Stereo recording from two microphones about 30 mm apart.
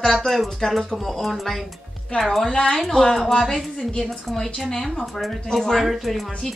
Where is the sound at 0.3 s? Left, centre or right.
Centre.